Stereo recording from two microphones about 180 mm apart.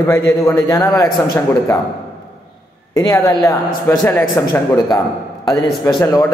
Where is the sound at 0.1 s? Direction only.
15° left (ahead or behind).